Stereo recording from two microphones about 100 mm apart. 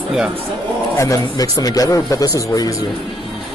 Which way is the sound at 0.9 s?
35° left (ahead or behind).